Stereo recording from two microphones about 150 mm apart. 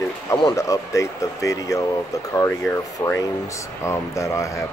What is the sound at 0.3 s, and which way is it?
Speech, 25° left (ahead or behind).